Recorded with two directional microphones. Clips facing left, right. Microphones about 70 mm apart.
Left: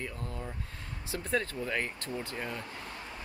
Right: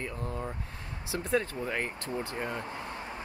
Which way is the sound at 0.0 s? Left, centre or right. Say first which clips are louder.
Right 4 dB; right.